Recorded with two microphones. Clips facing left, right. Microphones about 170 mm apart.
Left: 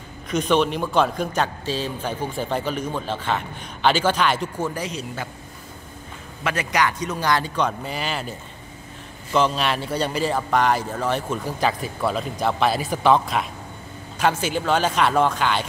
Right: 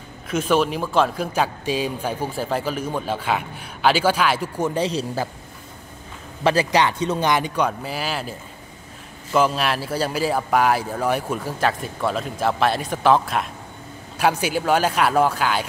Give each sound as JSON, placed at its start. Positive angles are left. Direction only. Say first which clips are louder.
{"t": 0.3, "sound": "speech", "louder": "even", "side_deg": -5}
{"t": 4.6, "sound": "a man's voice", "louder": "right 4 dB", "side_deg": -20}
{"t": 4.8, "sound": "speech", "louder": "right 6 dB", "side_deg": -35}
{"t": 6.4, "sound": "a man's voice", "louder": "right 5 dB", "side_deg": -30}